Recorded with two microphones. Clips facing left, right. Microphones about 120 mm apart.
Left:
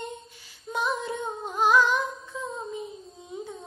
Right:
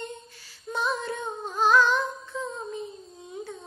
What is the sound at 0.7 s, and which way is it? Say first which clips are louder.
Singing: even; 15° left (ahead or behind).